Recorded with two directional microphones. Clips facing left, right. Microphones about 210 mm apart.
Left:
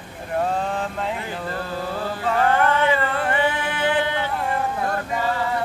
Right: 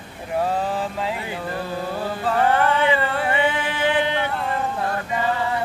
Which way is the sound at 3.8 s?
20° right (ahead or behind).